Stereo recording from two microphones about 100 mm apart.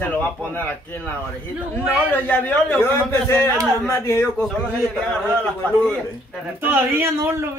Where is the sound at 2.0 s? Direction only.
20° left (ahead or behind).